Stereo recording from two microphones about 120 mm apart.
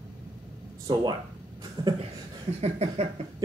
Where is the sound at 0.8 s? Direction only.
35° right (ahead or behind).